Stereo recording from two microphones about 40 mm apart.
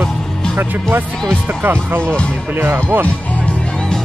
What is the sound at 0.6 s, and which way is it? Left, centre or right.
Speech, right.